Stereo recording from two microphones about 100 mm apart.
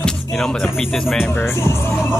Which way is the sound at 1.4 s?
25° left (ahead or behind).